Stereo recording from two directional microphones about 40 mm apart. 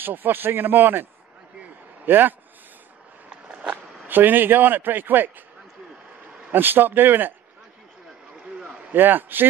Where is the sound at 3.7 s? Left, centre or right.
Right.